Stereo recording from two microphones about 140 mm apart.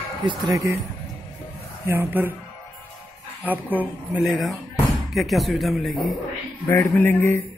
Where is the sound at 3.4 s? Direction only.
10° right (ahead or behind).